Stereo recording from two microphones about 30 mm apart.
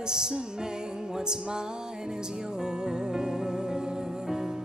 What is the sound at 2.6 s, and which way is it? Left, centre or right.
Music, right.